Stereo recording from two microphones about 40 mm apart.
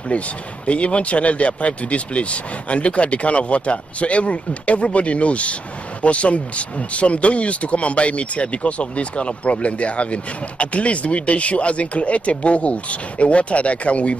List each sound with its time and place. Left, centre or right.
0.7 s speech: left